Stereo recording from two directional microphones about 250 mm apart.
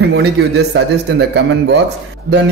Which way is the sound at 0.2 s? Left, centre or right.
Right.